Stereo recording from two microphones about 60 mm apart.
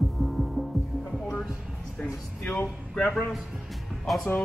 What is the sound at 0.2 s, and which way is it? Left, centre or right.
Gong, centre.